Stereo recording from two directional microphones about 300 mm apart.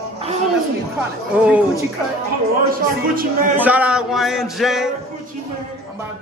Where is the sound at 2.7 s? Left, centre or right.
Right.